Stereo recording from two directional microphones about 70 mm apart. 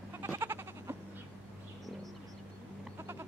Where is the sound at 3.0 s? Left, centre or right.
Right.